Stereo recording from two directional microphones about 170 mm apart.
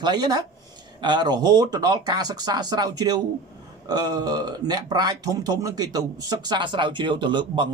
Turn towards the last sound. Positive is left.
turn(degrees=-30)  # may be behind; listen again after turning